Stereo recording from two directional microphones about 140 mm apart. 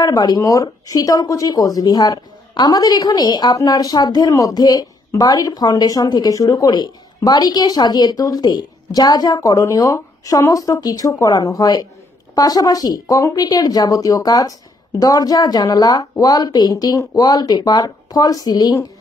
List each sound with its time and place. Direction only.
0.0 s a woman's voice: 25° left (ahead or behind)